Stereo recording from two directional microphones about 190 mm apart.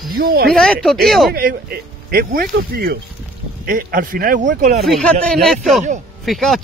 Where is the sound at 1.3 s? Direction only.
50° right (ahead or behind).